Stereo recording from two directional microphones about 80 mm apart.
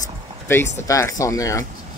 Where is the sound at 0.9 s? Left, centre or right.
Left.